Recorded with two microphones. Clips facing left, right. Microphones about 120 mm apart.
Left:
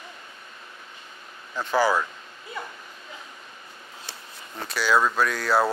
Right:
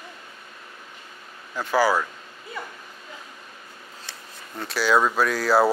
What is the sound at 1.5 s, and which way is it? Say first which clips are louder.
Speech: right 1 dB; 10° right (ahead or behind).